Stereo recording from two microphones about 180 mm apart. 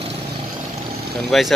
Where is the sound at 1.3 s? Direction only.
Centre (ahead or behind).